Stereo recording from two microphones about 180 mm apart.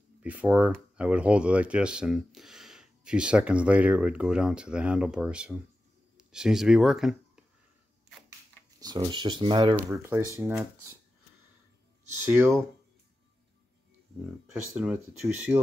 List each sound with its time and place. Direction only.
0.2 s speech: 5° right (ahead or behind)
8.7 s speech: 20° right (ahead or behind)
9.8 s speech: 15° right (ahead or behind)
14.5 s speech: 10° right (ahead or behind)